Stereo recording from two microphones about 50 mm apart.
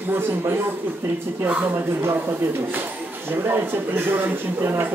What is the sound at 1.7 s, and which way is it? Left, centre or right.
Speech, right.